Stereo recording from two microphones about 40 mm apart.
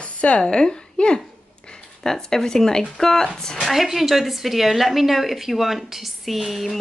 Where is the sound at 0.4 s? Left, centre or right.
Centre.